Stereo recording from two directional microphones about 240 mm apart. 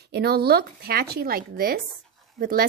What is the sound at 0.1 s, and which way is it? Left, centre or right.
A woman's voice, right.